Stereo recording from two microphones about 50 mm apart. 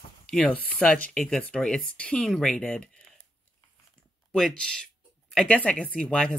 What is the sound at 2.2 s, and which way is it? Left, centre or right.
Speech, centre.